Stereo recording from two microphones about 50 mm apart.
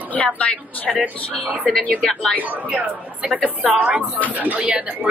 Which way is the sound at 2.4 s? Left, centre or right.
Right.